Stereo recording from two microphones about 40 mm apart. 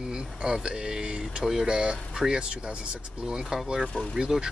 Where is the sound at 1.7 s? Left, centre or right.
Right.